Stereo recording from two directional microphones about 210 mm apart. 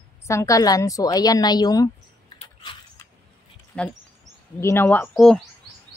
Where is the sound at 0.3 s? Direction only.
15° left (ahead or behind).